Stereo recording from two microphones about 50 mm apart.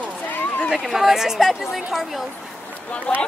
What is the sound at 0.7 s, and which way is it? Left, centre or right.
Speech, centre.